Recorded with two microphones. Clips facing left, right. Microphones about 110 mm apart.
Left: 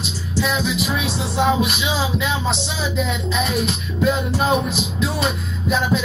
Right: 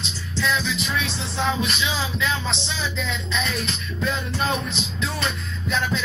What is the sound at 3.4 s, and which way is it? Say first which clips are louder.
Music: left 6 dB; 10° left (ahead or behind).